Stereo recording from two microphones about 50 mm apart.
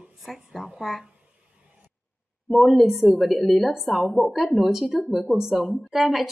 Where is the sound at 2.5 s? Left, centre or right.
Centre.